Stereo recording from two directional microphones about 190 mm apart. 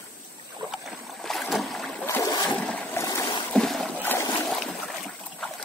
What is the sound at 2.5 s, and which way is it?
Boat, 5° left (ahead or behind).